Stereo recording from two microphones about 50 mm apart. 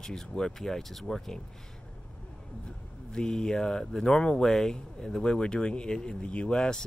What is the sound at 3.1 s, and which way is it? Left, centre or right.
Speech, centre.